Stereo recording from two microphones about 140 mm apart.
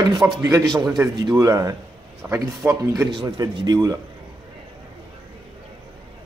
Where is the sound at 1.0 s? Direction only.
20° right (ahead or behind).